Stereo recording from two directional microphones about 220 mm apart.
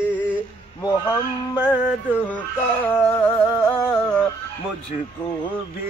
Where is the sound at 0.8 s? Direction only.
15° left (ahead or behind).